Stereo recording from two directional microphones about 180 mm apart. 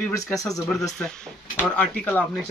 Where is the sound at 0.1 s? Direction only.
20° left (ahead or behind).